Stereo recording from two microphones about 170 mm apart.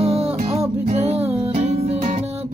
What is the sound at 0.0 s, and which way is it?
Music, 35° right (ahead or behind).